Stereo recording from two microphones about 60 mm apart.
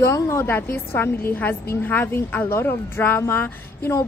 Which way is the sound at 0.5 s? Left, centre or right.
Left.